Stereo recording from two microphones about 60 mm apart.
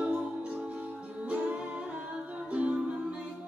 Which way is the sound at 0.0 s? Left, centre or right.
Centre.